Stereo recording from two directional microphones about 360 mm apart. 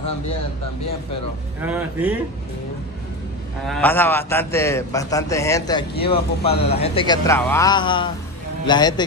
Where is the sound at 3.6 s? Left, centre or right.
Centre.